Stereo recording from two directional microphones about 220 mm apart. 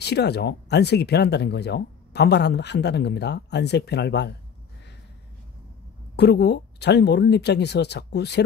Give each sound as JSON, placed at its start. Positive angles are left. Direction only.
{"t": 0.0, "sound": "speech", "side_deg": 50}
{"t": 6.1, "sound": "speech", "side_deg": 50}